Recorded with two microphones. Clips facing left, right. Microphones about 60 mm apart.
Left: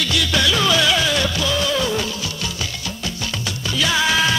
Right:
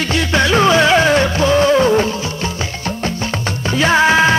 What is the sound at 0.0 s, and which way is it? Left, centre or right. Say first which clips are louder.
Music: right 4 dB; right.